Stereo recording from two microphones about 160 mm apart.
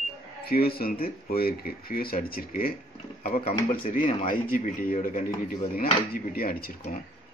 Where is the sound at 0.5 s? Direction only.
70° left (ahead or behind).